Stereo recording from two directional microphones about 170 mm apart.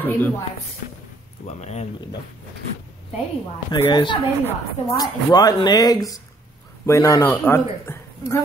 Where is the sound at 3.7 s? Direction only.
25° left (ahead or behind).